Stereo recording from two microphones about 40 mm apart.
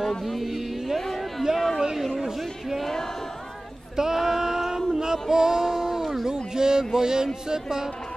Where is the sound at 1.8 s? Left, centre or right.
Centre.